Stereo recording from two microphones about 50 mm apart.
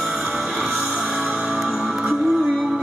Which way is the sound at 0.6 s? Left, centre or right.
Centre.